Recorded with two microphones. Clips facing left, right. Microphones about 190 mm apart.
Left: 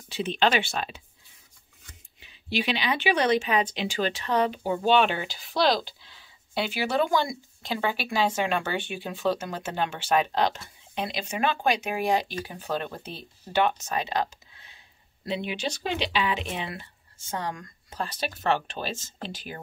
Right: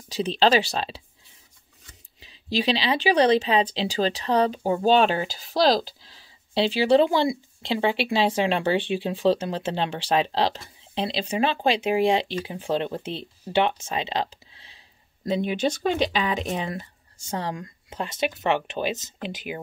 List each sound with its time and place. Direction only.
0.1 s speech: 35° right (ahead or behind)
2.1 s speech: 35° right (ahead or behind)
15.2 s speech: 45° right (ahead or behind)
17.6 s speech: 20° right (ahead or behind)